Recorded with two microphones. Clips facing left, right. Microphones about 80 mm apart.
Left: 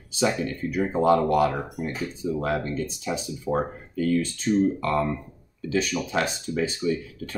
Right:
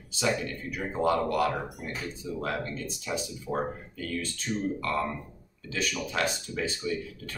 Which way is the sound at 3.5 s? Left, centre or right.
Left.